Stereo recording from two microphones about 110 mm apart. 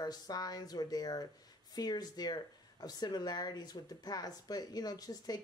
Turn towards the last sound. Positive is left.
turn(degrees=35)  # may be behind; listen again after turning